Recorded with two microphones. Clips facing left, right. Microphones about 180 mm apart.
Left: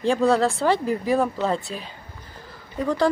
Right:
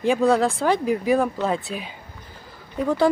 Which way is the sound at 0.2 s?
Centre (ahead or behind).